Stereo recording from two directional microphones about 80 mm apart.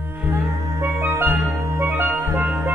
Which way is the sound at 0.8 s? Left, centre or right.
Right.